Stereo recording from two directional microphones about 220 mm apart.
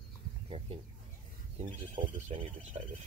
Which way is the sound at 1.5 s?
30° right (ahead or behind).